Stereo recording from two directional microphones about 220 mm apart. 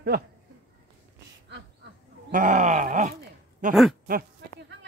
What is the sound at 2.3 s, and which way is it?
Speech, 35° right (ahead or behind).